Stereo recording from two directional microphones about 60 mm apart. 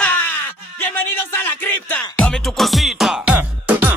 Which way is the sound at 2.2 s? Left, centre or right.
Centre.